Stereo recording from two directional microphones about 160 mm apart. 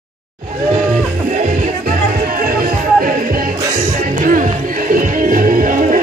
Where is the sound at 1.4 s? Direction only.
50° right (ahead or behind).